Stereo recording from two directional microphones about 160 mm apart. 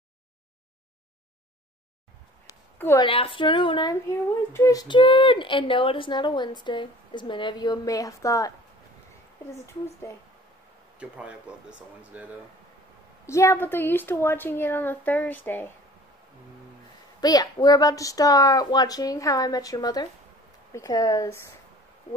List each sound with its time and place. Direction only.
3.0 s a woman's voice: 35° left (ahead or behind)
4.1 s speech: 15° left (ahead or behind)
11.0 s speech: 5° right (ahead or behind)
13.3 s a woman's voice: 20° left (ahead or behind)
17.2 s speech: 25° left (ahead or behind)